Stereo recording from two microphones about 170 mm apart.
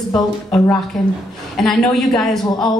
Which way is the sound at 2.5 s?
25° left (ahead or behind).